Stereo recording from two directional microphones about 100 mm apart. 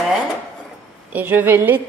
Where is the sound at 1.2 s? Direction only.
20° right (ahead or behind).